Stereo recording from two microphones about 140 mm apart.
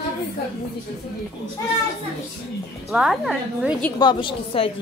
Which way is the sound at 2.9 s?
5° right (ahead or behind).